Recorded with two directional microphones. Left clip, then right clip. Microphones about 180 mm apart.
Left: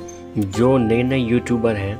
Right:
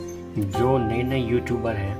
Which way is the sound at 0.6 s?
40° left (ahead or behind).